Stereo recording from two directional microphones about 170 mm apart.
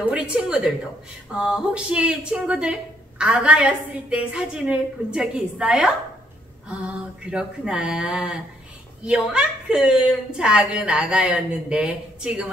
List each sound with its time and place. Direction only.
0.1 s a woman's voice: 5° right (ahead or behind)
7.2 s a woman's voice: 5° right (ahead or behind)